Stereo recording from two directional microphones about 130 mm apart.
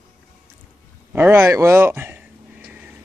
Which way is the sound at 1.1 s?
15° right (ahead or behind).